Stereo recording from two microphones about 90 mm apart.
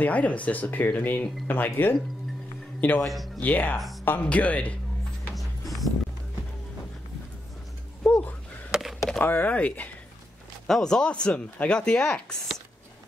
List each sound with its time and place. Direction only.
0.0 s speech: 15° left (ahead or behind)
3.7 s speech: centre (ahead or behind)
4.0 s speech: 20° left (ahead or behind)
5.3 s music: centre (ahead or behind)
8.0 s a sound: 20° left (ahead or behind)
8.7 s a sound: centre (ahead or behind)
9.2 s speech: 20° left (ahead or behind)